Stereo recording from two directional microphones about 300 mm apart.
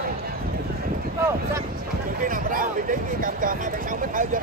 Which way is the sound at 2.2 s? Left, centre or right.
Right.